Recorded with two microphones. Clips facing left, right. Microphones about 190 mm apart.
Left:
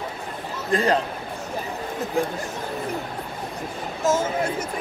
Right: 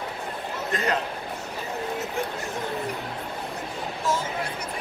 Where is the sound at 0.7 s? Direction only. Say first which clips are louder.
Left 7 dB; 30° left (ahead or behind).